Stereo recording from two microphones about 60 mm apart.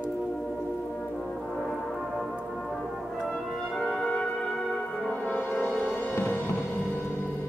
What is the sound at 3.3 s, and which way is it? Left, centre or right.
Music, centre.